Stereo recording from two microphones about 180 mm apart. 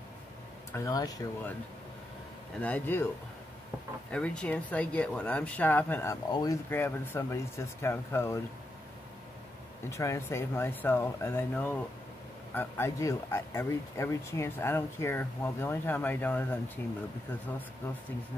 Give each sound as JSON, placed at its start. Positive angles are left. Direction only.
{"t": 0.7, "sound": "speech", "side_deg": 20}
{"t": 2.6, "sound": "speech", "side_deg": 10}
{"t": 4.1, "sound": "speech", "side_deg": 5}
{"t": 9.8, "sound": "speech", "side_deg": 15}